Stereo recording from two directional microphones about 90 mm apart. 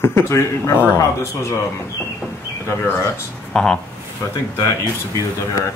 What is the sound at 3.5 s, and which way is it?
Speech, 5° left (ahead or behind).